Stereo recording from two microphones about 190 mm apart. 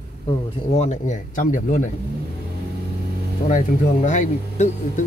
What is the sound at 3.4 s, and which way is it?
Speech, 40° left (ahead or behind).